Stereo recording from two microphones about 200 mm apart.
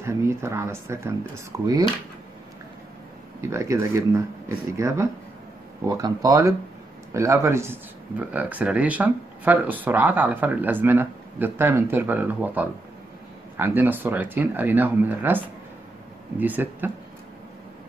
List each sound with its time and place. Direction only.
0.0 s speech: 10° right (ahead or behind)
3.3 s speech: 15° right (ahead or behind)